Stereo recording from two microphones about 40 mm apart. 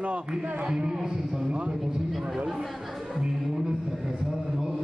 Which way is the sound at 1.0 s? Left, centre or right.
Centre.